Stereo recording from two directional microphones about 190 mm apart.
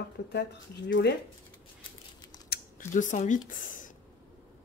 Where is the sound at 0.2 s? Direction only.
60° left (ahead or behind).